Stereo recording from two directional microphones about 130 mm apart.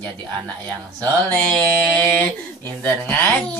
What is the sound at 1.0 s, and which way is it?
Speech, 10° left (ahead or behind).